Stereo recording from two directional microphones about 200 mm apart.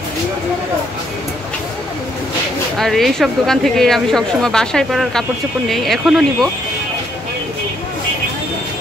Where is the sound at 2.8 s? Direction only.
Centre (ahead or behind).